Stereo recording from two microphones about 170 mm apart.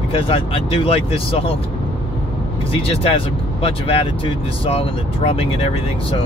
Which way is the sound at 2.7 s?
30° left (ahead or behind).